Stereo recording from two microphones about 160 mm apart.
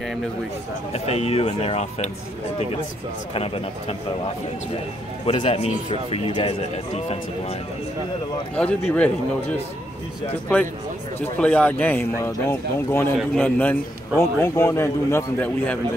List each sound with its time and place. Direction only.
0.9 s speech: 40° left (ahead or behind)
5.2 s speech: 35° left (ahead or behind)
8.5 s a man's voice: 10° left (ahead or behind)
11.1 s a man's voice: 10° left (ahead or behind)